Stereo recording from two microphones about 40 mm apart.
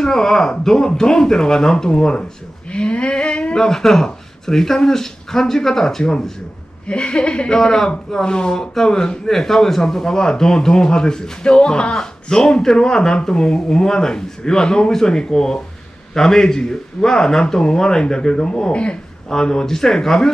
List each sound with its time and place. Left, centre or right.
0.0 s speech: centre
3.5 s speech: centre
6.9 s speech: left
7.5 s speech: centre